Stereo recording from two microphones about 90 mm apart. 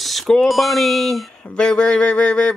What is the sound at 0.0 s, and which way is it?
Speech, centre (ahead or behind).